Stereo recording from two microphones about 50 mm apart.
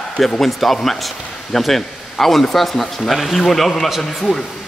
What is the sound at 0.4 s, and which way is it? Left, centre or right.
A man's voice, centre.